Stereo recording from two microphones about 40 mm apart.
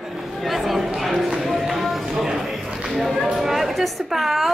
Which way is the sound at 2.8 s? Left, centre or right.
Centre.